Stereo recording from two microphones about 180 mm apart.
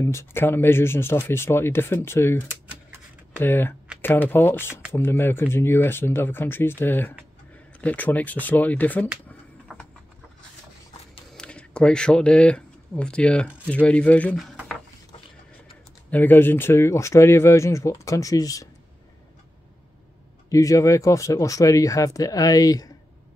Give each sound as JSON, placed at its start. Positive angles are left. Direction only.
{"t": 0.0, "sound": "speech", "side_deg": 15}
{"t": 3.3, "sound": "speech", "side_deg": 10}
{"t": 9.7, "sound": "clip-clop", "side_deg": 0}
{"t": 11.3, "sound": "speech", "side_deg": 5}
{"t": 16.1, "sound": "speech", "side_deg": 10}
{"t": 20.4, "sound": "speech", "side_deg": 15}